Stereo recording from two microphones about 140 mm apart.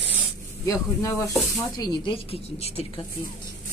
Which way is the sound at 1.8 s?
35° left (ahead or behind).